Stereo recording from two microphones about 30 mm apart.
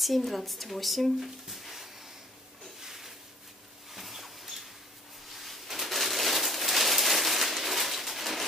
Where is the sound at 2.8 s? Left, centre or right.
Centre.